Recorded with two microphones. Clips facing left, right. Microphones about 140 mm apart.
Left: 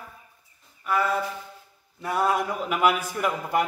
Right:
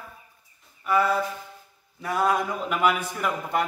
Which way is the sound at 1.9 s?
Centre (ahead or behind).